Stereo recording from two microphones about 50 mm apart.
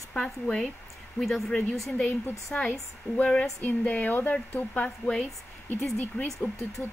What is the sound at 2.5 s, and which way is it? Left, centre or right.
Speech, left.